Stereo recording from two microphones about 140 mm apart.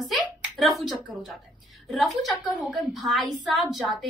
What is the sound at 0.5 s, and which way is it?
A woman's voice, centre (ahead or behind).